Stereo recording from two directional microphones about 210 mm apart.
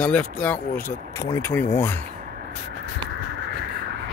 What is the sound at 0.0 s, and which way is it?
Speech, 5° left (ahead or behind).